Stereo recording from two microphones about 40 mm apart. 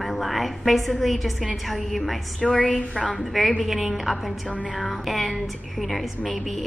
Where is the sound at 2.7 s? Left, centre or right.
Left.